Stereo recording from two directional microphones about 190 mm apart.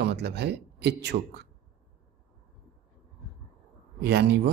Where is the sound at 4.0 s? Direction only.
60° right (ahead or behind).